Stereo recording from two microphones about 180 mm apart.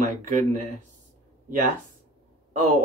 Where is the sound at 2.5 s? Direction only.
40° right (ahead or behind).